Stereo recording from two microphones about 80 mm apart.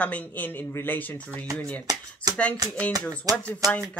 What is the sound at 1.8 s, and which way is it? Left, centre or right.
Speech, right.